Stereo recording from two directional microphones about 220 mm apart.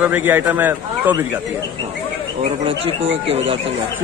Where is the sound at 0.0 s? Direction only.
10° right (ahead or behind).